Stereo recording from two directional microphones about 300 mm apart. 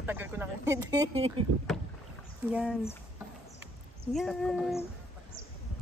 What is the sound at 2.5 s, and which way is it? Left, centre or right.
Speech, centre.